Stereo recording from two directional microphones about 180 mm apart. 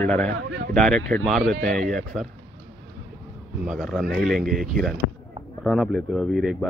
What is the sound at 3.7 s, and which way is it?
Speech, centre (ahead or behind).